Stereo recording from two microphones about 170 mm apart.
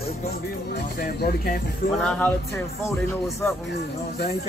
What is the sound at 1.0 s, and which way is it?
Speech, 60° left (ahead or behind).